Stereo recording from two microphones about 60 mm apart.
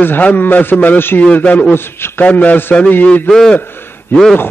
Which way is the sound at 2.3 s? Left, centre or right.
Left.